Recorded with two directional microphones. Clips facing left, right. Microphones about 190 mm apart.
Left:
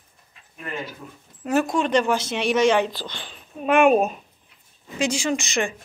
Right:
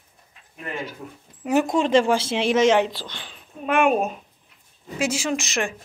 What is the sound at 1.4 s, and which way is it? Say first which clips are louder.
A woman's voice: right 1 dB; 20° right (ahead or behind).